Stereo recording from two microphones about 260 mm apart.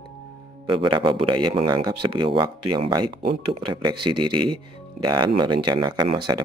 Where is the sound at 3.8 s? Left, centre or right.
Centre.